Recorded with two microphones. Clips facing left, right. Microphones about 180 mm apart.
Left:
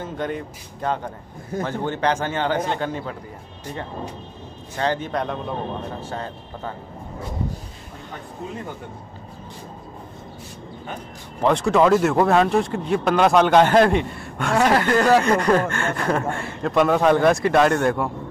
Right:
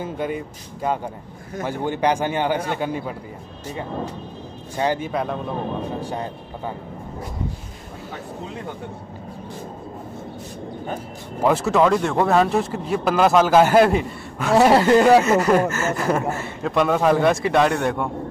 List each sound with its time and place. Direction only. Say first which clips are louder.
0.0 s a man's voice: right 1 dB; 10° right (ahead or behind)
4.7 s a man's voice: right 1 dB; 10° right (ahead or behind)
11.4 s speech: even; 5° right (ahead or behind)
14.7 s speech: right 3 dB; 25° right (ahead or behind)
15.2 s speech: right 1 dB; 5° right (ahead or behind)